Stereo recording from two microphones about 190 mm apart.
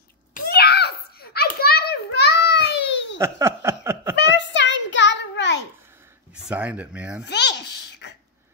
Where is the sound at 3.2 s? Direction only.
15° right (ahead or behind).